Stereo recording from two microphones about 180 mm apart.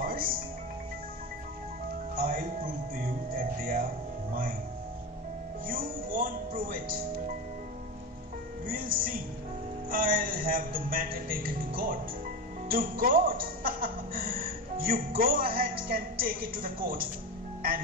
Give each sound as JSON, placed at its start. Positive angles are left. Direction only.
{"t": 0.0, "sound": "music", "side_deg": -55}
{"t": 2.1, "sound": "music", "side_deg": -55}
{"t": 5.7, "sound": "music", "side_deg": -50}
{"t": 8.6, "sound": "music", "side_deg": -50}